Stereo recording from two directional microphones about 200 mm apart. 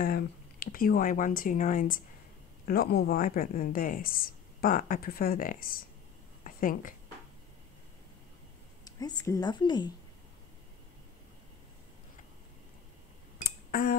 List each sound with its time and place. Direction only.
0.0 s a woman's voice: 45° left (ahead or behind)
8.8 s a woman's voice: 15° left (ahead or behind)
13.4 s a sound: 45° left (ahead or behind)